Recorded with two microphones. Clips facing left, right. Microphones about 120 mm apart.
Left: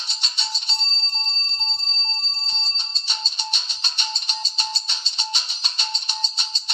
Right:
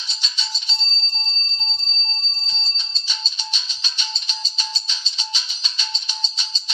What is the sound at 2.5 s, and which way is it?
Music, 55° left (ahead or behind).